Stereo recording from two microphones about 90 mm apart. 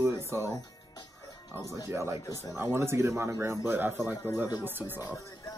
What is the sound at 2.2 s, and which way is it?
Speech, 40° left (ahead or behind).